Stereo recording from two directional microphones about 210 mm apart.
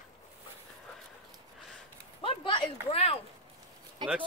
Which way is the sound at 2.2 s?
25° left (ahead or behind).